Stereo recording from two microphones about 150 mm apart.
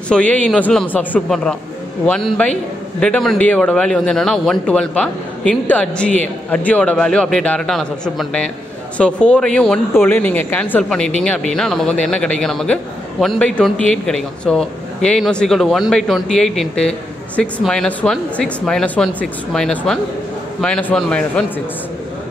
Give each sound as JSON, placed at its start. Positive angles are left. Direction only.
{"t": 0.1, "sound": "speech", "side_deg": 10}